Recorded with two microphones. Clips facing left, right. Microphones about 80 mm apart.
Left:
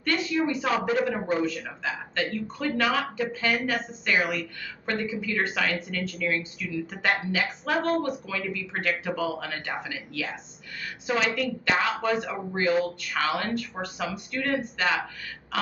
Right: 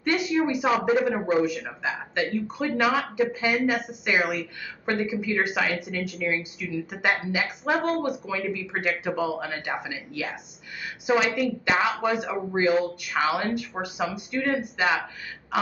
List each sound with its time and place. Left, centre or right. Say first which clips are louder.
0.0 s a man's voice: right 2 dB; centre